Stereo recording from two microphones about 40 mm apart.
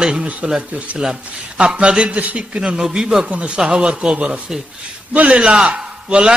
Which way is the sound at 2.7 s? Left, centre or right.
Centre.